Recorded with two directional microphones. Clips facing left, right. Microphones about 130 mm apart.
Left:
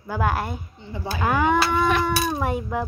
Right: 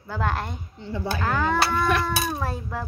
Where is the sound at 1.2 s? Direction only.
15° left (ahead or behind).